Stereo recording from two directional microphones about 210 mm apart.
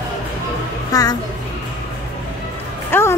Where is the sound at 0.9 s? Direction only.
15° left (ahead or behind).